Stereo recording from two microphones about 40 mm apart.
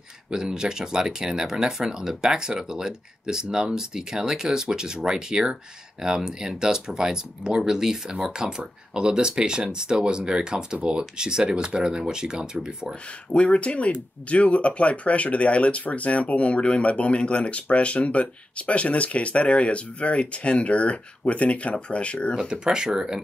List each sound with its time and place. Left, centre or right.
0.3 s speech: centre
13.3 s speech: left
22.5 s speech: centre